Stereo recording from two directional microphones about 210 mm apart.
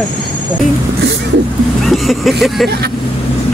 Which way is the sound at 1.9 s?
Centre (ahead or behind).